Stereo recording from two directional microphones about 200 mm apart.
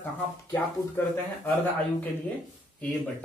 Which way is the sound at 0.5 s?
10° left (ahead or behind).